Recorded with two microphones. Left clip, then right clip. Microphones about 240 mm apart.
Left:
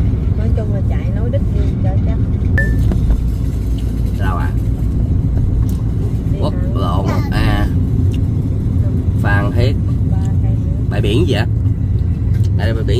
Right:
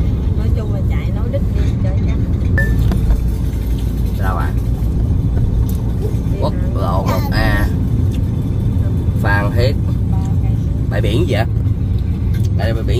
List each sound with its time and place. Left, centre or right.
6.4 s vehicle: centre
11.0 s vehicle: centre